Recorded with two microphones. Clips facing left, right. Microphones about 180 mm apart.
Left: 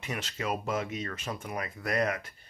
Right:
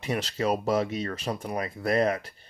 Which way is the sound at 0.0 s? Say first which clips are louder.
Right 7 dB; 35° right (ahead or behind).